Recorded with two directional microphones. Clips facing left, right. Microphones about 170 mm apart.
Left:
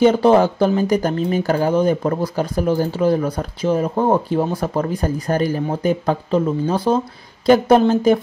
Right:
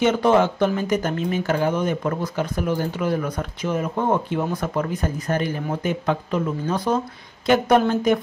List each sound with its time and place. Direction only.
0.0 s a woman's voice: 35° left (ahead or behind)